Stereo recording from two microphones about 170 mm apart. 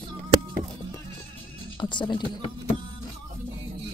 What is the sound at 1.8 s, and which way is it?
Speech, 25° left (ahead or behind).